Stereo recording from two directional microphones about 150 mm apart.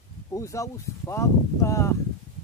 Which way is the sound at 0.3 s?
20° left (ahead or behind).